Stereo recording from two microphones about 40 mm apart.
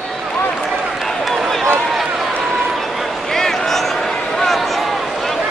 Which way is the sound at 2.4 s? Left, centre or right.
Centre.